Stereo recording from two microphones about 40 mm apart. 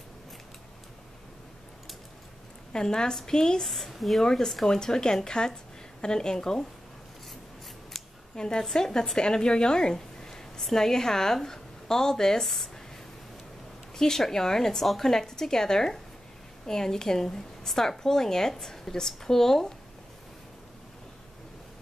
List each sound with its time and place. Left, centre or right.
2.7 s a woman's voice: centre
3.6 s speech: centre
4.2 s a woman's voice: centre
8.4 s speech: centre
13.9 s a woman's voice: centre